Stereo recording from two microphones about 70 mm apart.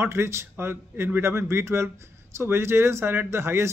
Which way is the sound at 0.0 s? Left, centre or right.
Right.